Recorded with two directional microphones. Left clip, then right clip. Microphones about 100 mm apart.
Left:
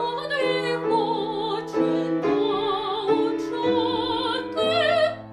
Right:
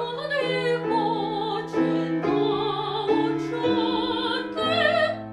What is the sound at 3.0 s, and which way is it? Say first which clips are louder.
Music: right 1 dB; 40° left (ahead or behind).